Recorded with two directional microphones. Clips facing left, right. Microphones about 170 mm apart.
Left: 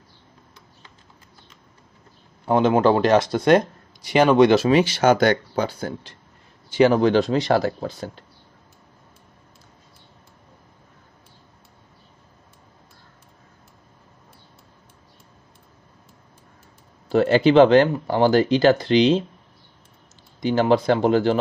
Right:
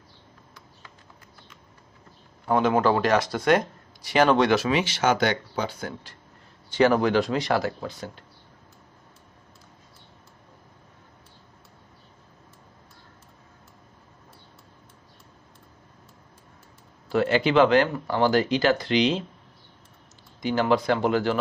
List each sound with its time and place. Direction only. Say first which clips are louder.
2.4 s speech: left 4 dB; 25° left (ahead or behind)
4.6 s speech: left 7 dB; 40° left (ahead or behind)
6.7 s speech: left 4 dB; 20° left (ahead or behind)
17.1 s speech: left 6 dB; 30° left (ahead or behind)
20.4 s speech: left 4 dB; 30° left (ahead or behind)